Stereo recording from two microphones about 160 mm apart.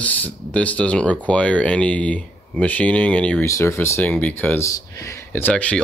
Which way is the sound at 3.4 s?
20° left (ahead or behind).